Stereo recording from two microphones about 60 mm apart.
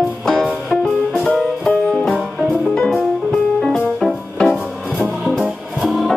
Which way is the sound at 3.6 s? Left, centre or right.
Centre.